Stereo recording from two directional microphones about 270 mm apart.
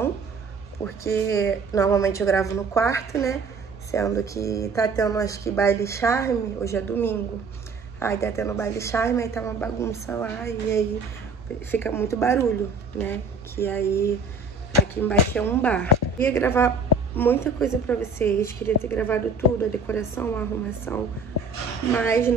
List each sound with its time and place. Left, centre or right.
1.0 s speech: centre